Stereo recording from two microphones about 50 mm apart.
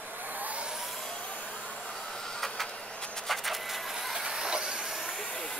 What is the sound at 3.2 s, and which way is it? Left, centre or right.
Printer, centre.